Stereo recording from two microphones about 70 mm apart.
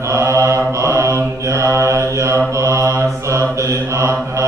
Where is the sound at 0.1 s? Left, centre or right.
Right.